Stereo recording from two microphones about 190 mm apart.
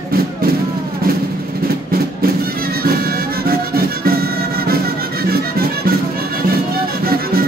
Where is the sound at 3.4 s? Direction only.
50° right (ahead or behind).